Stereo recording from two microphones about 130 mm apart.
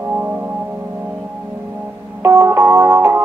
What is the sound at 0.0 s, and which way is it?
Music, 15° right (ahead or behind).